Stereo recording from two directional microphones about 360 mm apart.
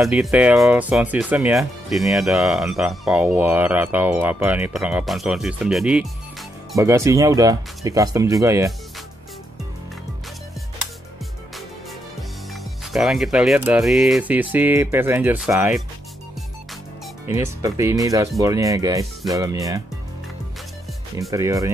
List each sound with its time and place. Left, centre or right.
0.0 s speech: centre
12.9 s speech: centre
17.3 s speech: centre
21.2 s speech: centre